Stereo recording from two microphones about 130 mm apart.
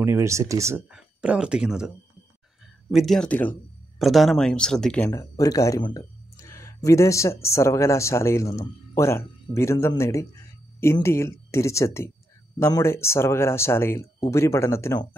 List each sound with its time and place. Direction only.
0.0 s speech: 20° right (ahead or behind)
0.8 s speech: 10° right (ahead or behind)
2.9 s speech: centre (ahead or behind)
4.0 s speech: centre (ahead or behind)
5.4 s speech: 25° left (ahead or behind)
6.3 s a sound: 25° left (ahead or behind)
7.4 s speech: 20° left (ahead or behind)